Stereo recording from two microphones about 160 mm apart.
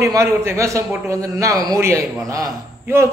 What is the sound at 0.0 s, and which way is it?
A man's voice, 20° right (ahead or behind).